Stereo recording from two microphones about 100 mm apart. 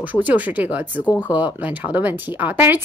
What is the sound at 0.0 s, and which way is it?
A woman's voice, 15° right (ahead or behind).